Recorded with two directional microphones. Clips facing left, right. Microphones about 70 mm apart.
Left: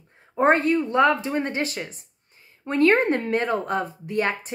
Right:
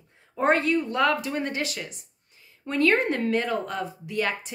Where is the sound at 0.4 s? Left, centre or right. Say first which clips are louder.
Left 3 dB; left.